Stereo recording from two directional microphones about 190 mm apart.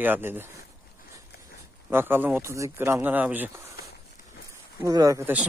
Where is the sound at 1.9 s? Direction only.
10° right (ahead or behind).